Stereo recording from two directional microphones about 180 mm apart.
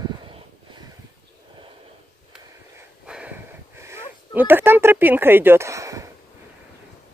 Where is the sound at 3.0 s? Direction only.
5° right (ahead or behind).